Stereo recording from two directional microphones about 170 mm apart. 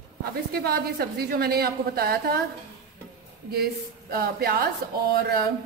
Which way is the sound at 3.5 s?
65° right (ahead or behind).